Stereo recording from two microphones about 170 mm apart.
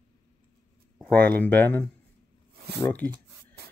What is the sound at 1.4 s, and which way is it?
Speech, 10° left (ahead or behind).